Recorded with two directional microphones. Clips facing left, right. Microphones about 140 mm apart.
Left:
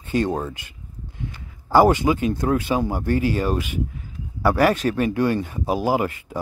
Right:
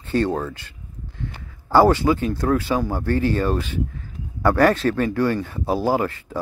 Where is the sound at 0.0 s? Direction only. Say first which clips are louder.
Right 1 dB; 15° left (ahead or behind).